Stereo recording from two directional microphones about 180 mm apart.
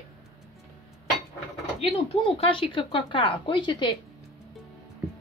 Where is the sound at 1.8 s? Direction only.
30° left (ahead or behind).